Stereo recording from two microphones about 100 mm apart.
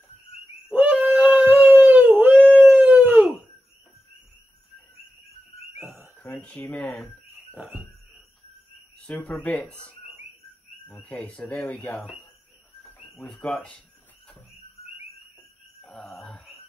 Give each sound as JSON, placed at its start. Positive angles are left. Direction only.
{"t": 0.7, "sound": "howl", "side_deg": -15}
{"t": 6.1, "sound": "speech", "side_deg": 15}
{"t": 7.2, "sound": "cricket", "side_deg": -25}
{"t": 9.0, "sound": "speech", "side_deg": 15}
{"t": 13.3, "sound": "speech", "side_deg": 10}
{"t": 15.8, "sound": "a sound", "side_deg": 5}